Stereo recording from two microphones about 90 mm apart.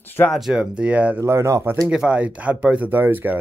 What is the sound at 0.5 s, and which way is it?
Speech, 15° right (ahead or behind).